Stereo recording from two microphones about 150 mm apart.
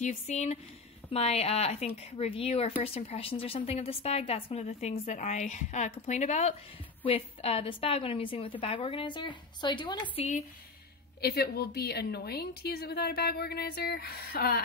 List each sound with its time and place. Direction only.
0.0 s speech: 50° left (ahead or behind)
7.1 s a woman's voice: 40° left (ahead or behind)
11.1 s a woman's voice: 90° left